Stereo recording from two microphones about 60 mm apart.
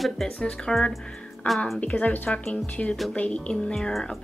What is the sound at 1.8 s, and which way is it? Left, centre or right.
Speech, left.